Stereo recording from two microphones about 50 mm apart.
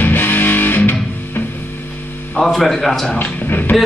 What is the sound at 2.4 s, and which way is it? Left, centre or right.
Speech, centre.